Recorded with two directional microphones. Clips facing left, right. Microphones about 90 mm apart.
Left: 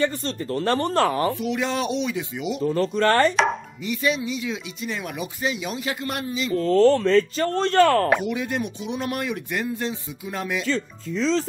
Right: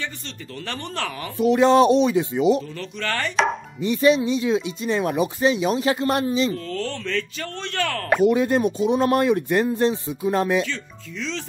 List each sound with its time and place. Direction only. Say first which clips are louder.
0.0 s speech: left 9 dB; 40° left (ahead or behind)
1.4 s speech: right 10 dB; 35° right (ahead or behind)
2.6 s speech: left 10 dB; 40° left (ahead or behind)
3.8 s speech: right 7 dB; 30° right (ahead or behind)
6.5 s speech: left 11 dB; 35° left (ahead or behind)
8.3 s speech: right 7 dB; 35° right (ahead or behind)
10.7 s speech: left 7 dB; 35° left (ahead or behind)